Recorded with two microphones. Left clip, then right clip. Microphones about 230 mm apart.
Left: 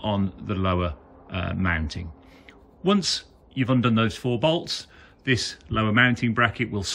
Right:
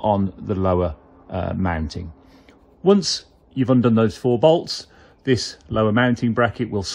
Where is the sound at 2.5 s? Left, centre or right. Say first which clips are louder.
Right 7 dB; centre.